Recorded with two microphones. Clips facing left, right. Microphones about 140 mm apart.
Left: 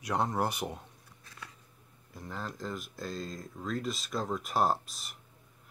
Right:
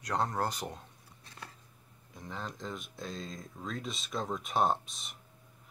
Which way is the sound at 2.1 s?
5° left (ahead or behind).